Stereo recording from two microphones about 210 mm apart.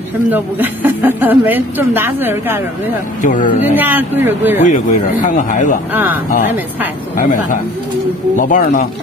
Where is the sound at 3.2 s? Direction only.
40° left (ahead or behind).